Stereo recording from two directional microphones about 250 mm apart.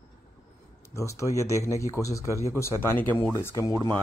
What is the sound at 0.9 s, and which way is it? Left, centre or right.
A man's voice, centre.